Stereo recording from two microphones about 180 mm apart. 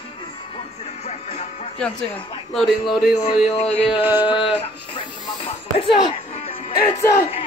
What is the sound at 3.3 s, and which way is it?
Speech, 40° left (ahead or behind).